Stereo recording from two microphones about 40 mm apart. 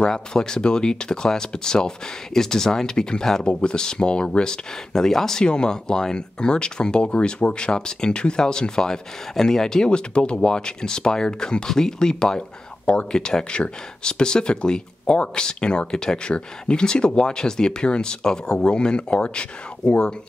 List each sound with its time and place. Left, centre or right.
0.0 s speech: centre
5.4 s speech: left